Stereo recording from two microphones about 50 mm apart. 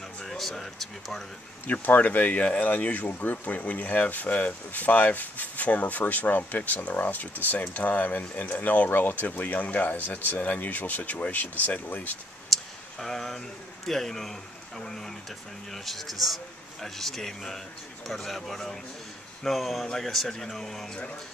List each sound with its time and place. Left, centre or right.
0.2 s speech: centre
1.7 s speech: left
12.5 s clicking: centre
13.0 s speech: centre